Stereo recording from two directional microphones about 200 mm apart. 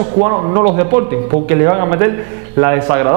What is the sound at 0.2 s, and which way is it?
A man's voice, 25° right (ahead or behind).